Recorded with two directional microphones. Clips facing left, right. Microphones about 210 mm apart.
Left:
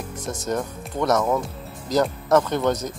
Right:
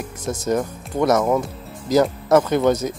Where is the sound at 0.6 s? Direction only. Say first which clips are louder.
Right 4 dB; 5° right (ahead or behind).